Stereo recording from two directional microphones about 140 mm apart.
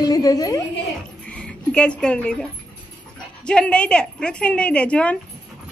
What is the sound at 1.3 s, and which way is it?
A woman's voice, 5° left (ahead or behind).